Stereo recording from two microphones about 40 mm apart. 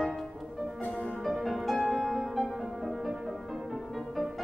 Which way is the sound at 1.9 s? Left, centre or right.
Centre.